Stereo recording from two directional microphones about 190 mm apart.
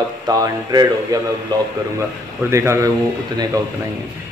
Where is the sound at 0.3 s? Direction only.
20° right (ahead or behind).